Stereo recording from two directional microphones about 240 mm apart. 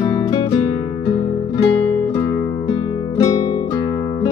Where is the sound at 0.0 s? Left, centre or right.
Centre.